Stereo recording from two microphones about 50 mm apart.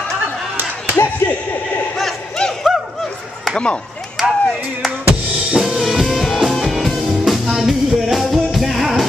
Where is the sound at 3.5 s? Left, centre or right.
Left.